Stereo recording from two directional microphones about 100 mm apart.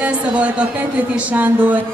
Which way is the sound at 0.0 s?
15° right (ahead or behind).